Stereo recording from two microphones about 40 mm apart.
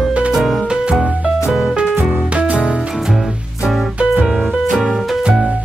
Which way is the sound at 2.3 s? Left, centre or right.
Right.